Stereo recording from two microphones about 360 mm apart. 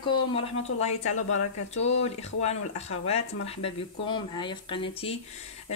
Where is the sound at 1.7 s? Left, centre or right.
Centre.